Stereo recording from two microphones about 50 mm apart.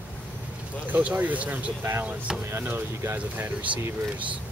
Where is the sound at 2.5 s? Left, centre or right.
Right.